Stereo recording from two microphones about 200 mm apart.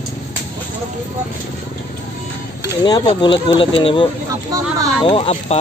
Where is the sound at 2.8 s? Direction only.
20° left (ahead or behind).